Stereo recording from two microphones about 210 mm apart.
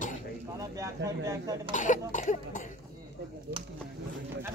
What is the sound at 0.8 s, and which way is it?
Speech, 15° right (ahead or behind).